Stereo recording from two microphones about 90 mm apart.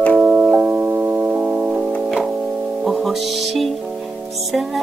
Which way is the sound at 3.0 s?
Centre (ahead or behind).